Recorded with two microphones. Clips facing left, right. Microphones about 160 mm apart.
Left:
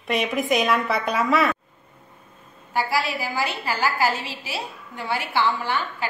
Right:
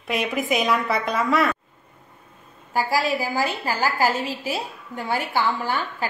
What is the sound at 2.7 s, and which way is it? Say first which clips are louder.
A woman's voice: right 2 dB; 40° right (ahead or behind).